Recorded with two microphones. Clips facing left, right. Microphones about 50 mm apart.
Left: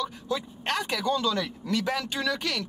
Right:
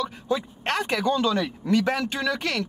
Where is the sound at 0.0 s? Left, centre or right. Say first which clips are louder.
Right 4 dB; right.